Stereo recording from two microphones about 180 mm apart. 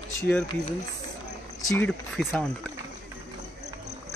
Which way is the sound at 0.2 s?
5° left (ahead or behind).